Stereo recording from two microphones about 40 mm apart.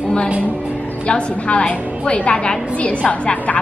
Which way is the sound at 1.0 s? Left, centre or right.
Left.